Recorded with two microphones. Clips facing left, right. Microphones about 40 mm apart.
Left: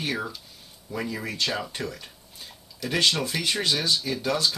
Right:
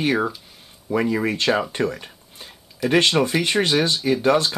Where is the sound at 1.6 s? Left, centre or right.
Right.